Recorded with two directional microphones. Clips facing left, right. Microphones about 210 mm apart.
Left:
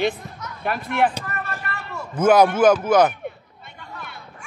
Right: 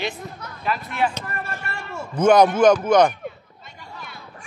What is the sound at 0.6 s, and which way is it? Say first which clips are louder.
Speech: left 2 dB; 55° left (ahead or behind).